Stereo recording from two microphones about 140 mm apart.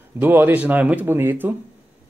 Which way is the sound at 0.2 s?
15° right (ahead or behind).